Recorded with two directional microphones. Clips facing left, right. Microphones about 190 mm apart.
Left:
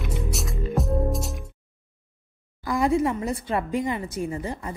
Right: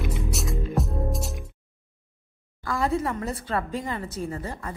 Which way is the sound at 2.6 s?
15° left (ahead or behind).